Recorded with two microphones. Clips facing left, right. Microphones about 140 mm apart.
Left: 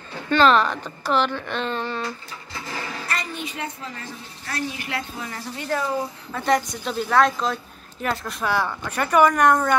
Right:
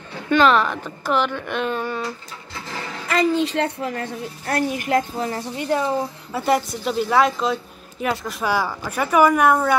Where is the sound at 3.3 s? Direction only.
80° right; by 5.4 s 40° right (ahead or behind).